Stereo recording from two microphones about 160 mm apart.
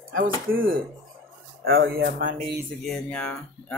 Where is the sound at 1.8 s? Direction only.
85° right.